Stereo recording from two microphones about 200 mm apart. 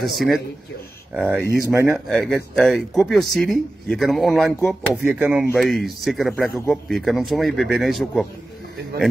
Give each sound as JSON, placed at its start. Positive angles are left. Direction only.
{"t": 0.0, "sound": "speech", "side_deg": 0}
{"t": 1.7, "sound": "speech", "side_deg": -10}
{"t": 2.0, "sound": "speech", "side_deg": 0}